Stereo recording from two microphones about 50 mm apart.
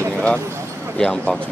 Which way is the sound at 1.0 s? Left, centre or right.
Centre.